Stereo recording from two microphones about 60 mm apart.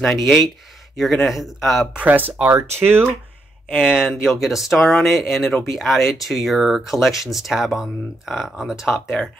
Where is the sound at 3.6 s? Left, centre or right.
Centre.